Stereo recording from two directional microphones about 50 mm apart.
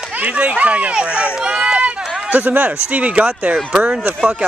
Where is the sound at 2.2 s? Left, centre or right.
Right.